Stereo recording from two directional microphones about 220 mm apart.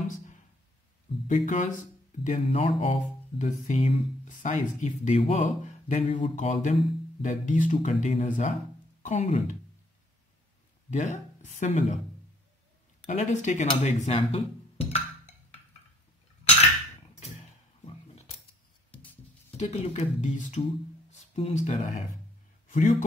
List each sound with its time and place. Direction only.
1.2 s speech: 35° left (ahead or behind)
10.9 s speech: 30° left (ahead or behind)
13.0 s a sound: 30° left (ahead or behind)
19.5 s speech: 30° left (ahead or behind)